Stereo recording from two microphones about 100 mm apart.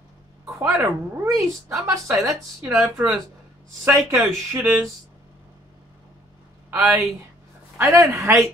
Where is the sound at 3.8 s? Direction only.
30° right (ahead or behind).